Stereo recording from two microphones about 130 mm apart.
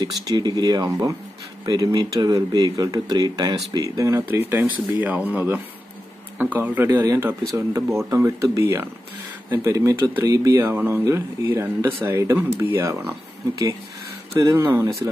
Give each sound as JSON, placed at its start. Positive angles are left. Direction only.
{"t": 0.3, "sound": "speech", "side_deg": -30}
{"t": 14.3, "sound": "speech", "side_deg": -25}